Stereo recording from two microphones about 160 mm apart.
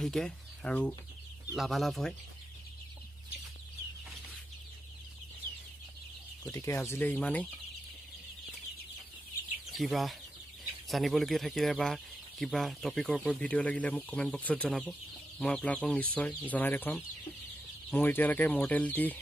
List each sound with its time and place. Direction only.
0.0 s speech: 5° left (ahead or behind)
6.4 s speech: 15° left (ahead or behind)
9.7 s speech: centre (ahead or behind)